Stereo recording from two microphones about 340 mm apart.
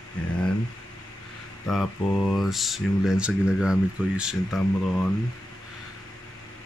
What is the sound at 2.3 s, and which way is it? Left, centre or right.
Speech, centre.